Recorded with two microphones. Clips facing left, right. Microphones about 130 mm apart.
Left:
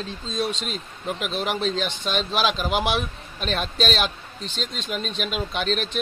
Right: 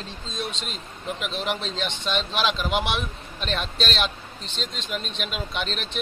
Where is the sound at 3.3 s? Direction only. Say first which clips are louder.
Left 3 dB; 5° left (ahead or behind).